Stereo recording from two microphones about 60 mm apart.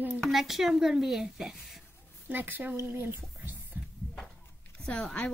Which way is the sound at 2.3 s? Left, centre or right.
Right.